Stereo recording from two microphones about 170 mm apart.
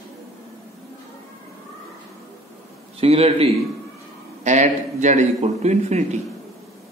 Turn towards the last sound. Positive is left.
turn(degrees=-40)  # may be behind; listen again after turning